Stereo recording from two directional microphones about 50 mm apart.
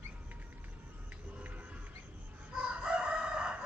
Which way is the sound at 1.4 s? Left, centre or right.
Right.